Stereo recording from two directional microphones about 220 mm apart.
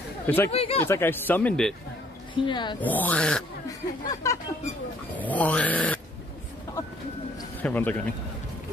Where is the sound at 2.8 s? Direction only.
10° left (ahead or behind).